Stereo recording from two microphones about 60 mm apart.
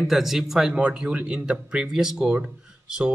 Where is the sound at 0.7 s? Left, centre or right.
Centre.